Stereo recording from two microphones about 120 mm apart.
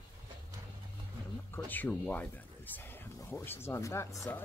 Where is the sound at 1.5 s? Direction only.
15° left (ahead or behind).